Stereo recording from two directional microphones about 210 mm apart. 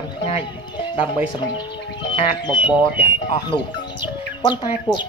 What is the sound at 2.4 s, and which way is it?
Speech, 20° left (ahead or behind).